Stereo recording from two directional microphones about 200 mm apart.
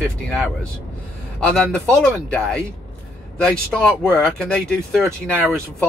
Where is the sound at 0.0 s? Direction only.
5° left (ahead or behind).